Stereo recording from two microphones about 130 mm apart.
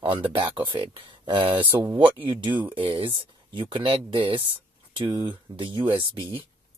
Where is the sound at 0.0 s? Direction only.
45° right (ahead or behind).